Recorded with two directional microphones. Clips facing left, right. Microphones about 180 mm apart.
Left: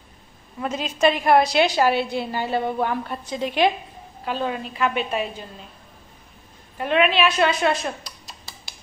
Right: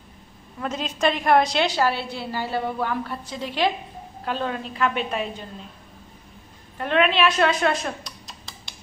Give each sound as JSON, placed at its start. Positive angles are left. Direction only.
{"t": 0.6, "sound": "a woman's voice", "side_deg": 5}
{"t": 4.2, "sound": "a woman's voice", "side_deg": 5}
{"t": 6.8, "sound": "speech", "side_deg": 10}